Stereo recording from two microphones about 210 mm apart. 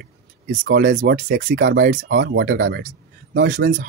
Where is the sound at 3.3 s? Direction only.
45° right (ahead or behind).